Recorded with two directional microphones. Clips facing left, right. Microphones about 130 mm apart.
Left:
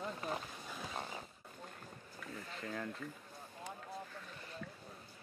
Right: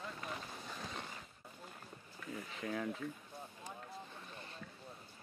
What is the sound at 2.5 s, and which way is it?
Speech, 5° right (ahead or behind).